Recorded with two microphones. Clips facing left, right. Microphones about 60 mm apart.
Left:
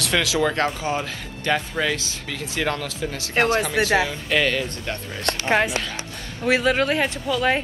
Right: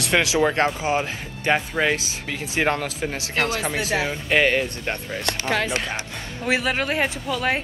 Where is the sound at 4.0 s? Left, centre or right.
Right.